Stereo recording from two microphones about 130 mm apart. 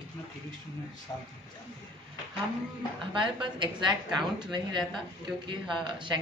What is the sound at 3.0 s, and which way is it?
A woman's voice, 40° right (ahead or behind).